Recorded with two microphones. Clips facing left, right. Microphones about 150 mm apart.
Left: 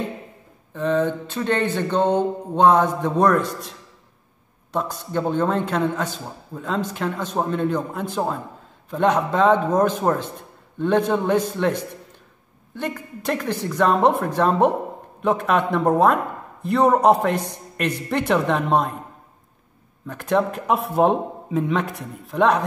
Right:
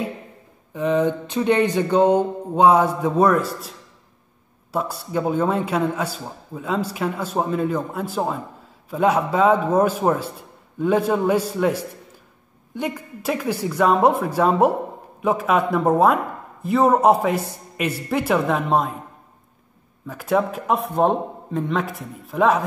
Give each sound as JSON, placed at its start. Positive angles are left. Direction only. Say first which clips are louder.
{"t": 0.7, "sound": "a man's voice", "louder": "right 1 dB", "side_deg": -10}
{"t": 4.7, "sound": "a man's voice", "louder": "right 1 dB", "side_deg": -5}
{"t": 20.1, "sound": "a man's voice", "louder": "even", "side_deg": -5}